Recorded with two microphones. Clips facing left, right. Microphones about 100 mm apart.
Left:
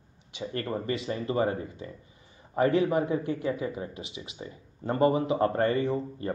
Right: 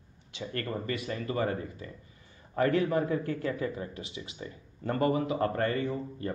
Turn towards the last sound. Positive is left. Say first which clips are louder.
# left 4 dB
turn(degrees=25)  # may be behind; listen again after turning